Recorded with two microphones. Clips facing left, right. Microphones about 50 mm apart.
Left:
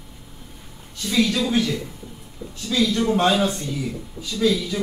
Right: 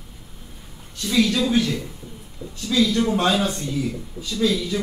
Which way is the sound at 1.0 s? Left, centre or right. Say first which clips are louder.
Right 1 dB; centre.